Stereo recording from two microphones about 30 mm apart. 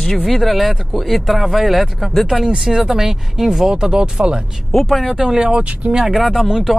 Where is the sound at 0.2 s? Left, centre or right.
Centre.